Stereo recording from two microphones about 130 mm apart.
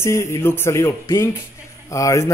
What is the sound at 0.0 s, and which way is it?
Speech, 20° left (ahead or behind).